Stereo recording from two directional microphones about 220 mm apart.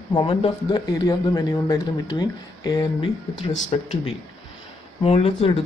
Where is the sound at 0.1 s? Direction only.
25° left (ahead or behind).